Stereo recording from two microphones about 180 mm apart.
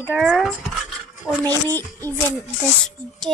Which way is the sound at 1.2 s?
10° left (ahead or behind).